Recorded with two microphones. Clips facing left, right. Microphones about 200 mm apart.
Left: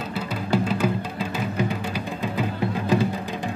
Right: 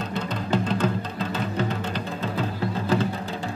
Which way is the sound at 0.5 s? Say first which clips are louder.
Left 2 dB; 10° left (ahead or behind).